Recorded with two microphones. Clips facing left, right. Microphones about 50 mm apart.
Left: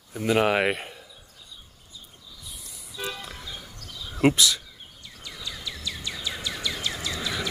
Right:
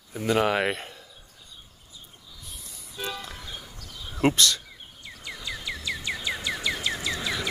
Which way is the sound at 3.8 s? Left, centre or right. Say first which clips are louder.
Left 2 dB; left.